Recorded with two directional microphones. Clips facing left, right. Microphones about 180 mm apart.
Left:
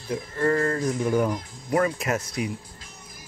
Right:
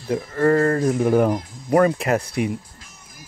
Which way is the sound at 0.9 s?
55° right (ahead or behind).